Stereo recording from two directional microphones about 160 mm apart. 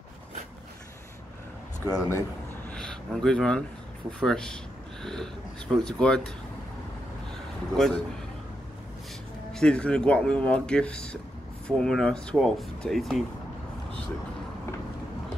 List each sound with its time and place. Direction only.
1.9 s speech: 20° left (ahead or behind)
2.7 s speech: 5° left (ahead or behind)
7.7 s speech: 5° left (ahead or behind)
9.5 s speech: 5° left (ahead or behind)